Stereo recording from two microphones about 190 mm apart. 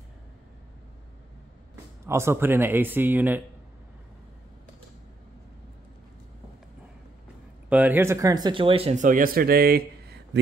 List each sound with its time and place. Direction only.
2.0 s a man's voice: 15° right (ahead or behind)
7.7 s speech: 10° right (ahead or behind); by 10.4 s 55° right (ahead or behind)